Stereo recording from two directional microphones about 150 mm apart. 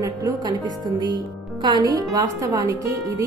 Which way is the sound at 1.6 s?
25° right (ahead or behind).